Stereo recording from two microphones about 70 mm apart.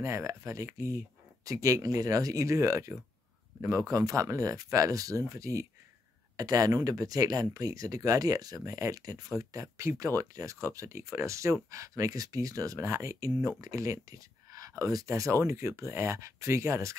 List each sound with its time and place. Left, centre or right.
0.0 s speech: right
6.3 s speech: right
15.0 s speech: right